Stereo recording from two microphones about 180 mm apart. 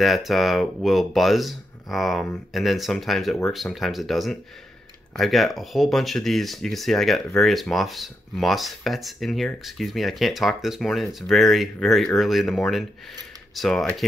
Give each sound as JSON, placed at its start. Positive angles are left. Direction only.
{"t": 0.0, "sound": "speech", "side_deg": 0}